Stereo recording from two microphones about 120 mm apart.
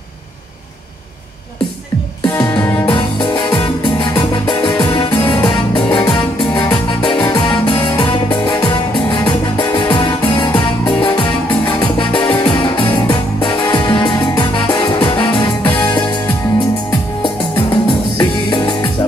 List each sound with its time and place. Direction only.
2.2 s music: 40° left (ahead or behind)
2.5 s music: 15° left (ahead or behind)
2.9 s music: 40° left (ahead or behind)